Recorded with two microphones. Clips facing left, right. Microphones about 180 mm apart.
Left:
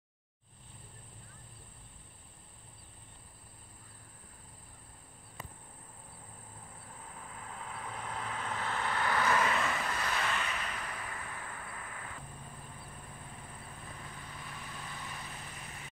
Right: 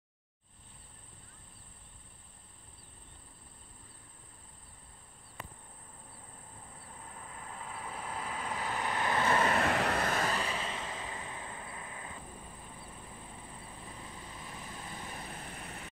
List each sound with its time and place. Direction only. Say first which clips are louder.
7.1 s vehicle: even; centre (ahead or behind); by 9.5 s 30° right (ahead or behind)
9.5 s vehicle: right 4 dB; 55° right (ahead or behind)
10.0 s a sound: right 3 dB; 40° right (ahead or behind); by 12.2 s 20° right (ahead or behind)
14.0 s vehicle: right 1 dB; 25° right (ahead or behind)